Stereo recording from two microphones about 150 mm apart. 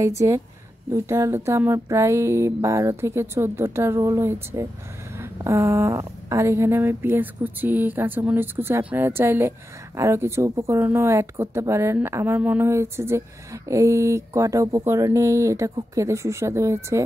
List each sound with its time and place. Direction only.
0.0 s a woman's voice: 20° right (ahead or behind)